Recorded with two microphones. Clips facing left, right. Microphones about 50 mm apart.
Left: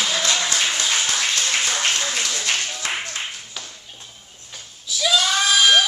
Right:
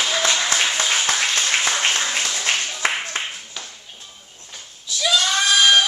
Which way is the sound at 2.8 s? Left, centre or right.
Right.